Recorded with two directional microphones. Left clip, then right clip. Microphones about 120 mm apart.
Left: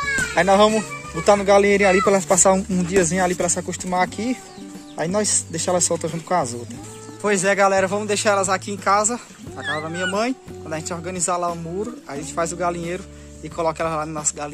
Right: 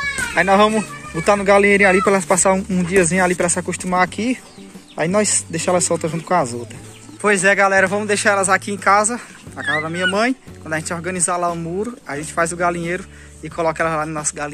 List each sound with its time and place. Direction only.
0.3 s speech: 20° left (ahead or behind); by 2.2 s centre (ahead or behind)
2.2 s speech: 25° left (ahead or behind)